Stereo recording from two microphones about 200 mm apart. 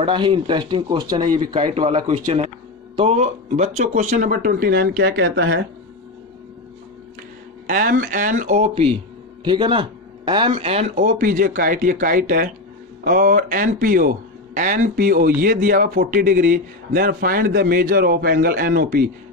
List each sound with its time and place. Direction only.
0.0 s speech: 25° right (ahead or behind); by 5.7 s 60° right (ahead or behind)
7.6 s speech: 45° right (ahead or behind)
11.1 s a man's voice: 45° right (ahead or behind)